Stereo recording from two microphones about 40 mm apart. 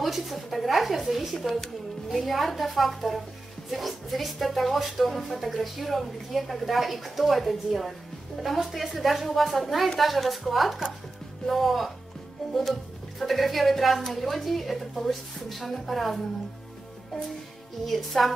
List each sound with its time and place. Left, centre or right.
0.0 s speech: centre
13.2 s speech: centre
17.8 s speech: centre